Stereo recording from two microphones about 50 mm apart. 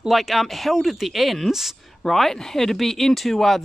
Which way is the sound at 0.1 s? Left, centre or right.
Centre.